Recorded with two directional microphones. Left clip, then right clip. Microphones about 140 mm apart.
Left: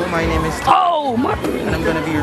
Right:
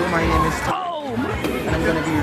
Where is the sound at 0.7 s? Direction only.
35° left (ahead or behind).